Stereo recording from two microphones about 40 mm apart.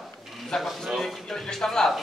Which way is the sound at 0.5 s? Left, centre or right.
Centre.